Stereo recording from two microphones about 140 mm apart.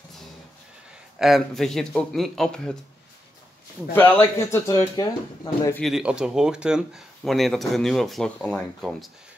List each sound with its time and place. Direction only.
1.1 s speech: centre (ahead or behind)
3.9 s speech: 15° left (ahead or behind)
5.8 s speech: centre (ahead or behind)